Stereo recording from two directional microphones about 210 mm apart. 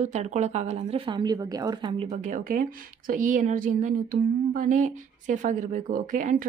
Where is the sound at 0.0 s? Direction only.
35° right (ahead or behind).